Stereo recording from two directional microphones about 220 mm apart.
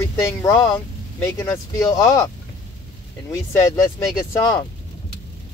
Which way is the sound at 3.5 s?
15° left (ahead or behind).